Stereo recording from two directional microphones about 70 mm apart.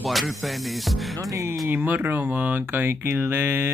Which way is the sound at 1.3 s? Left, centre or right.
Right.